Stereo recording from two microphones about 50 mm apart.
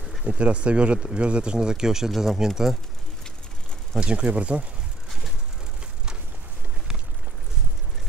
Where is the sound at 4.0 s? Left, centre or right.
Right.